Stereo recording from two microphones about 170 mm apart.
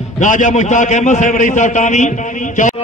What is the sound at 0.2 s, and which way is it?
A man's voice, 50° left (ahead or behind).